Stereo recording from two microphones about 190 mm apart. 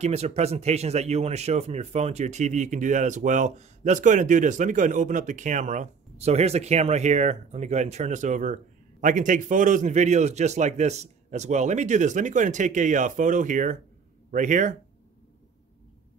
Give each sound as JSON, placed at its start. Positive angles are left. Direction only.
{"t": 0.0, "sound": "speech", "side_deg": -35}